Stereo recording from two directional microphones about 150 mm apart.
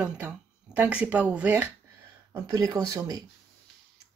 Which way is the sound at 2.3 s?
25° right (ahead or behind).